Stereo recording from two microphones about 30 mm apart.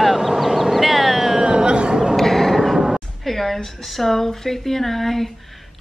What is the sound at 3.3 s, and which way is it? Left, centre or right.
A woman's voice, centre.